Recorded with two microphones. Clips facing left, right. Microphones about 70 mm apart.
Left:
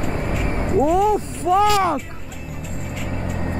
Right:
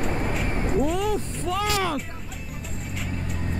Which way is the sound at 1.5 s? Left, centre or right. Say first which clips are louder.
Left 9 dB; left.